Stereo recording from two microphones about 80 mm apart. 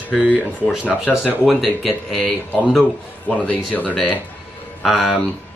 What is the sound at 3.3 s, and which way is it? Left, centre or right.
Speech, centre.